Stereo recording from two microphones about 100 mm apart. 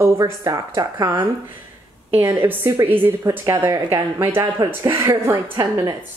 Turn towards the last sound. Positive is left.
turn(degrees=-35)  # may be behind; listen again after turning